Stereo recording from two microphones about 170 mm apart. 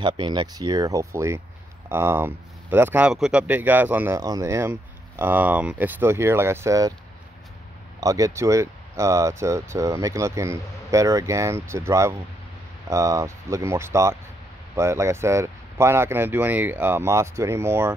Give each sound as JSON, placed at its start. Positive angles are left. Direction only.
{"t": 0.0, "sound": "speech", "side_deg": -25}
{"t": 8.0, "sound": "speech", "side_deg": -20}